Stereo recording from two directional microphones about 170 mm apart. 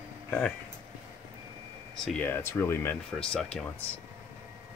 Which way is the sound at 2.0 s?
5° left (ahead or behind).